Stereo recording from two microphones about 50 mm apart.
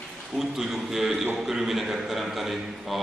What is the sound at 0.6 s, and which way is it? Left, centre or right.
A man's voice, centre.